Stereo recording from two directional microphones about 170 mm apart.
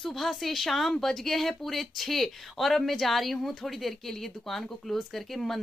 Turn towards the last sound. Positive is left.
turn(degrees=0)  # may be behind; listen again after turning